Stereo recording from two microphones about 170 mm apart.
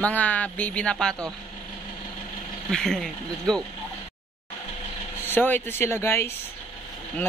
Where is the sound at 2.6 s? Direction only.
Centre (ahead or behind).